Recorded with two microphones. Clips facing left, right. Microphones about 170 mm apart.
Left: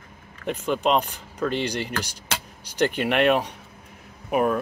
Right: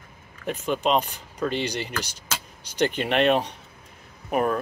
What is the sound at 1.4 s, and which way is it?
Speech, 15° right (ahead or behind).